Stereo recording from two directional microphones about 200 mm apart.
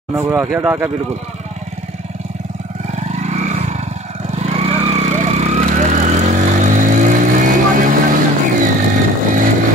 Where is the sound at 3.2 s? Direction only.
35° right (ahead or behind).